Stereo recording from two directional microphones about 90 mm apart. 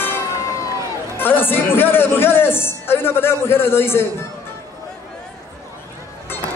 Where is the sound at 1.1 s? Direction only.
20° left (ahead or behind).